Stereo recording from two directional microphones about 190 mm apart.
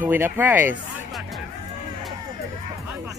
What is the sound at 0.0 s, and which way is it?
Speech, 10° right (ahead or behind).